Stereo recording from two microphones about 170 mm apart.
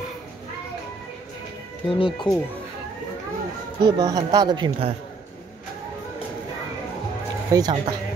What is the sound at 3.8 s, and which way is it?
Speech, 20° right (ahead or behind).